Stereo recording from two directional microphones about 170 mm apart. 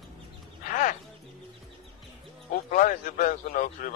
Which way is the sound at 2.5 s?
50° left (ahead or behind).